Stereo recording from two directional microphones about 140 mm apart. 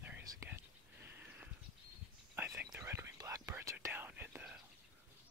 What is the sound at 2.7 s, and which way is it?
Whispering, 20° right (ahead or behind).